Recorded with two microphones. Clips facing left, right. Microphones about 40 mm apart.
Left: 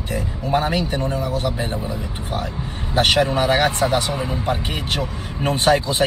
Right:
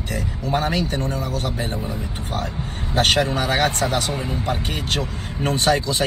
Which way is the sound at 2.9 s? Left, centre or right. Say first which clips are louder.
Left 2 dB; left.